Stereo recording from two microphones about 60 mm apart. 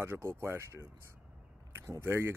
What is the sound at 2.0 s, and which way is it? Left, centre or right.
Speech, right.